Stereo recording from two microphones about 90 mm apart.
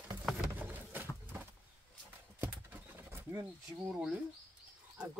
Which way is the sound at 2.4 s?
25° right (ahead or behind).